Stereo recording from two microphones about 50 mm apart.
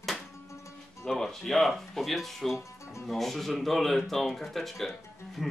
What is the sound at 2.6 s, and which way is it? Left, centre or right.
Music, left.